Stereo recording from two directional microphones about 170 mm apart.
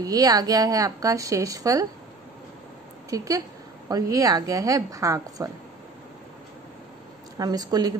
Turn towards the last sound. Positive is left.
turn(degrees=-25)  # may be behind; listen again after turning